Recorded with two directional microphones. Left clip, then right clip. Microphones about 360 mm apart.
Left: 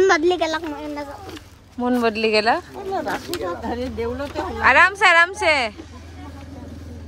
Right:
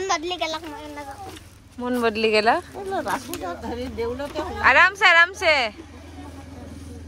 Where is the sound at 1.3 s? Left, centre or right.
Centre.